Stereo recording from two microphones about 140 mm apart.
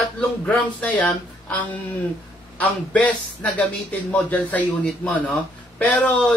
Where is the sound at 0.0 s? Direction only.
10° left (ahead or behind).